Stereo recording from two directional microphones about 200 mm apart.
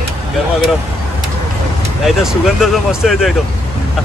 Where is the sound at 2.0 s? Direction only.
Centre (ahead or behind).